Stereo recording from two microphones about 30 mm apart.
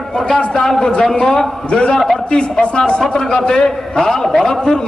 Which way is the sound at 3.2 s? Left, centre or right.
Left.